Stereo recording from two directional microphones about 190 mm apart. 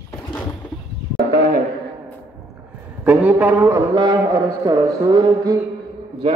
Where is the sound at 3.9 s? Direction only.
20° right (ahead or behind).